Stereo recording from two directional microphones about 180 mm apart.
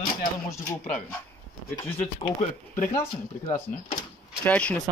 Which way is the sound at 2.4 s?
40° left (ahead or behind).